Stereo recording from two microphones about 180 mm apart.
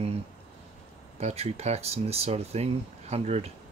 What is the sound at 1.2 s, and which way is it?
Speech, 35° right (ahead or behind).